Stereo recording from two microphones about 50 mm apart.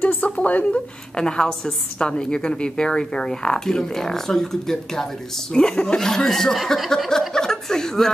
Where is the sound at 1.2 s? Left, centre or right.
Centre.